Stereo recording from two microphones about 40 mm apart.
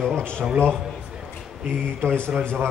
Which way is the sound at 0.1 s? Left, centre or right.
Left.